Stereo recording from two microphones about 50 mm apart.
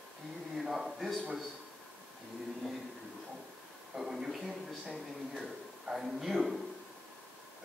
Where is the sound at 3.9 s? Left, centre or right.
Centre.